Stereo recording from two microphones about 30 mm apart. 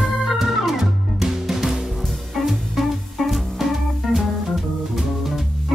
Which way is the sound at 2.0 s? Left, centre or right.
Centre.